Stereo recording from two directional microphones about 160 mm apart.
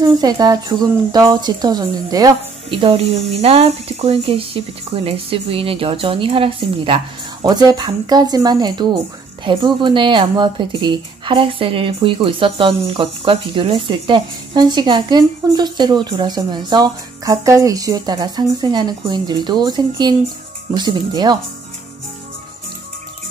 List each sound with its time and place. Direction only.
0.0 s speech: 25° right (ahead or behind)